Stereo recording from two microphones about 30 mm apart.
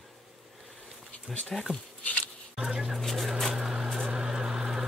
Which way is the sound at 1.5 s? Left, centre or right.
Centre.